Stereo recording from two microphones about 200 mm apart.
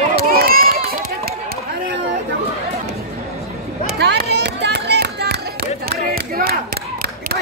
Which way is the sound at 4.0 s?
55° right (ahead or behind).